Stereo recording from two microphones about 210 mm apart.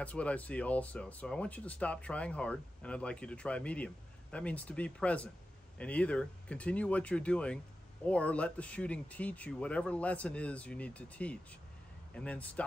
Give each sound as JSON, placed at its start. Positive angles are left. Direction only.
{"t": 0.0, "sound": "speech", "side_deg": 5}